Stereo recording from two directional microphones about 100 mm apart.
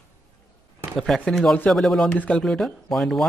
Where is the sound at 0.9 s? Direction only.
5° left (ahead or behind).